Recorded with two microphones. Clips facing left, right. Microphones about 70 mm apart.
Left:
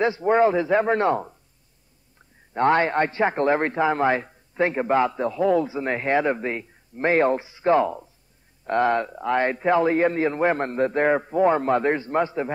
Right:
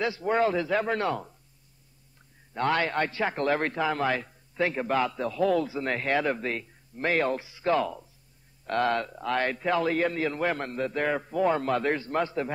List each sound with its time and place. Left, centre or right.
0.0 s a man's voice: left
2.5 s a man's voice: left